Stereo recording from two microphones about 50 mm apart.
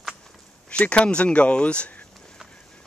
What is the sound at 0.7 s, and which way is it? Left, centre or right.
Speech, left.